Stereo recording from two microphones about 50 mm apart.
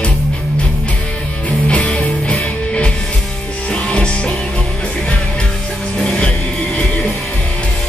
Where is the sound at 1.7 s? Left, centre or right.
Left.